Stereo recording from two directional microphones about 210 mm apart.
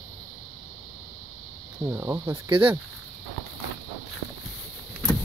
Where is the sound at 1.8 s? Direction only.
15° right (ahead or behind).